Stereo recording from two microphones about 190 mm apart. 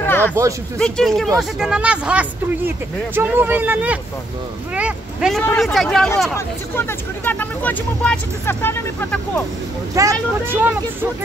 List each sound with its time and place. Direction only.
0.0 s a sound: 10° left (ahead or behind)
0.7 s speech: 5° left (ahead or behind)
6.3 s speech: 10° left (ahead or behind)
9.9 s speech: 15° right (ahead or behind)